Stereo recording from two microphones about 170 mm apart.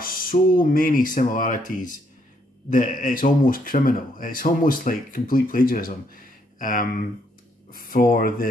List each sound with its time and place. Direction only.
0.0 s a man's voice: 55° left (ahead or behind)